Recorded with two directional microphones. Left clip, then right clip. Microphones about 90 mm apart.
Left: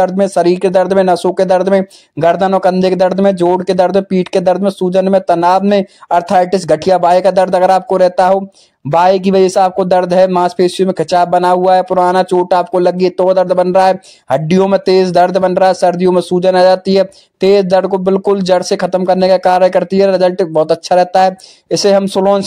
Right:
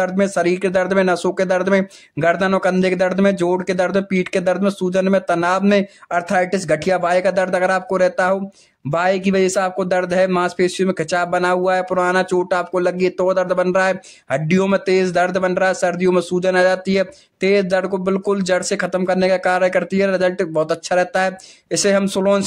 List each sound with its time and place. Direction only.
0.0 s speech: 35° left (ahead or behind)